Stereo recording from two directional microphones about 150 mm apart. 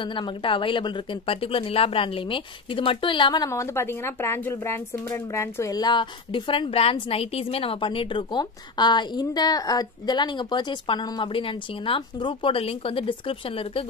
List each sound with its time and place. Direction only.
0.0 s speech: 35° left (ahead or behind)
3.4 s speech: 20° left (ahead or behind); by 13.8 s 35° left (ahead or behind)